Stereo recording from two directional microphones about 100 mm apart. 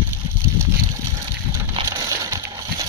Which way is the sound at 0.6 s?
30° right (ahead or behind).